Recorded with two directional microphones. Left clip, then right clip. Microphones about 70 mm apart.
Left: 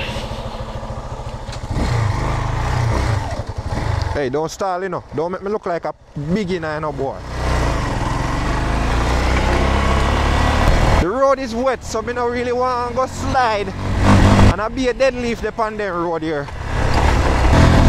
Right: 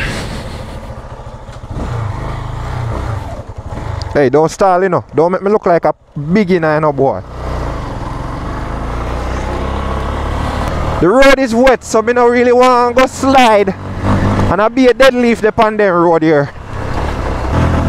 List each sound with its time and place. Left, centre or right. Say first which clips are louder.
1.8 s vehicle: left 1 dB; left
4.1 s speech: right 12 dB; right
7.4 s vehicle: left 5 dB; left
11.1 s speech: right 12 dB; right
14.0 s vehicle: left 1 dB; left
14.6 s speech: right 9 dB; right
16.8 s vehicle: left 1 dB; left